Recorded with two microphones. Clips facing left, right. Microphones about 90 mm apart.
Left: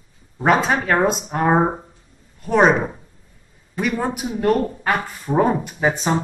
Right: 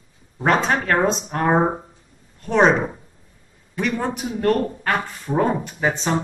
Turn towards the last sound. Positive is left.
turn(degrees=10)  # may be behind; listen again after turning